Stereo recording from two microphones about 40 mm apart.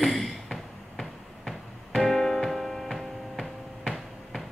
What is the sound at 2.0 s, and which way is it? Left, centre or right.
Music, centre.